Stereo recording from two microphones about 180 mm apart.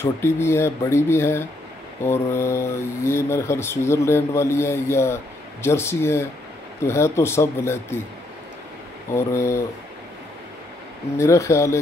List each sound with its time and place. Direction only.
0.0 s speech: 15° left (ahead or behind)
9.1 s speech: 15° left (ahead or behind)
11.1 s speech: 15° left (ahead or behind)